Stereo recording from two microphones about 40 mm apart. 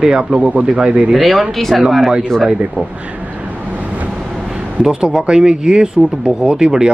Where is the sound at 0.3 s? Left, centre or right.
Right.